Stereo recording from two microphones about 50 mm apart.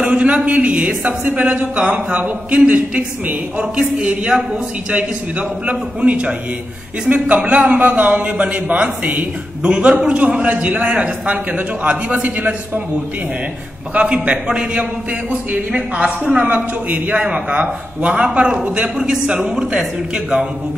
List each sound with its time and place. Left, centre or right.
0.0 s a man's voice: right
13.9 s a man's voice: right; by 20.4 s centre